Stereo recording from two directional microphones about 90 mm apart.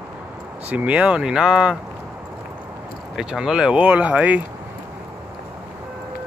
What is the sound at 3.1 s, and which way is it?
Speech, 5° right (ahead or behind).